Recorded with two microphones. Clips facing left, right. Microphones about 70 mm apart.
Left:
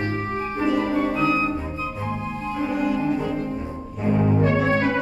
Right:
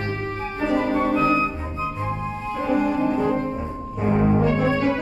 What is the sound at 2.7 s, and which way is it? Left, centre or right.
Music, right.